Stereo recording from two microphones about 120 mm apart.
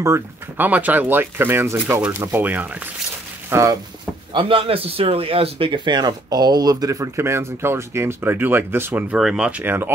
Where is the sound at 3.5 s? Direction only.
25° right (ahead or behind).